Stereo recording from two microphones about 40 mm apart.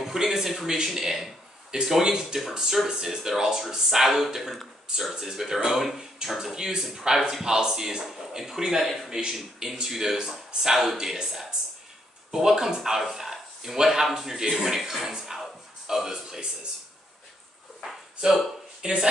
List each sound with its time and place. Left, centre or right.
0.0 s a man's voice: centre
4.4 s speech: centre
5.2 s speech: centre
13.0 s a sound: centre
13.8 s a man's voice: centre
17.8 s a sound: centre
18.8 s speech: right